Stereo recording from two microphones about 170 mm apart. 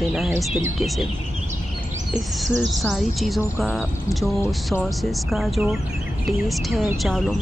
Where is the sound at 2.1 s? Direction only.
Centre (ahead or behind).